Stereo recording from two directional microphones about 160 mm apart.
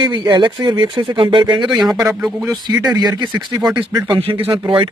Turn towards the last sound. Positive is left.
turn(degrees=-35)  # may be behind; listen again after turning